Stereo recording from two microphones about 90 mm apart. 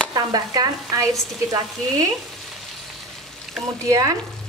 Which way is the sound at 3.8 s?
35° right (ahead or behind).